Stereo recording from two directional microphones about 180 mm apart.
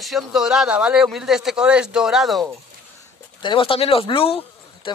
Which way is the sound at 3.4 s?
30° left (ahead or behind).